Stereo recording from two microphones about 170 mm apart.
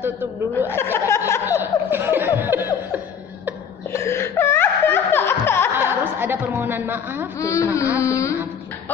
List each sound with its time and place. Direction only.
0.0 s speech: 10° right (ahead or behind)
0.9 s a sound: 15° left (ahead or behind)
1.6 s laughter: 10° right (ahead or behind)
3.9 s music: 15° left (ahead or behind)
5.8 s chuckle: 10° right (ahead or behind)
7.3 s speech: 20° left (ahead or behind)
8.0 s a sound: 20° left (ahead or behind)